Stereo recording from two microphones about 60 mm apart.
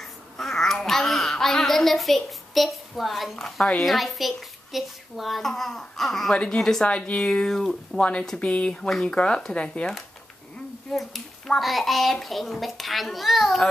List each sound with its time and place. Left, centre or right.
0.0 s a child's voice: centre
6.3 s speech: centre
7.4 s a child's voice: centre
8.0 s speech: centre
10.9 s a child's voice: centre